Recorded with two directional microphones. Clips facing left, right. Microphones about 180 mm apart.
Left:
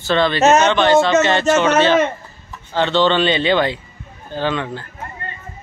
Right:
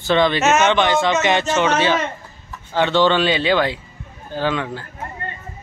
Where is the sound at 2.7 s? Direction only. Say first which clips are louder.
Even; 10° right (ahead or behind).